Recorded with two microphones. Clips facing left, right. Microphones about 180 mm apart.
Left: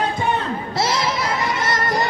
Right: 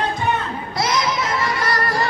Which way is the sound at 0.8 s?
30° left (ahead or behind).